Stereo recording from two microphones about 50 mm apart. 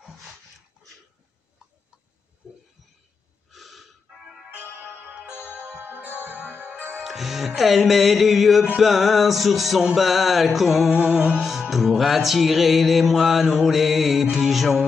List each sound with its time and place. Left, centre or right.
2.4 s a sound: centre
3.4 s snort: centre
4.6 s music: right
6.1 s music: right
7.0 s music: centre
10.9 s music: right
11.7 s music: centre